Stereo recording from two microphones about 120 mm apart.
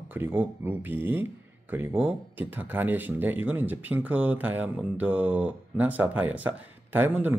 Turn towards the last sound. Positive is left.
turn(degrees=-15)  # may be behind; listen again after turning